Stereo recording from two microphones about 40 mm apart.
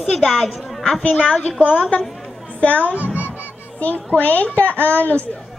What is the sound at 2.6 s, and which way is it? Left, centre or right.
Speech, left.